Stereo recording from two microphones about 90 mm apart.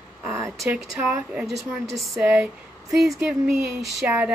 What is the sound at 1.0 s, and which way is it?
Speech, 20° right (ahead or behind).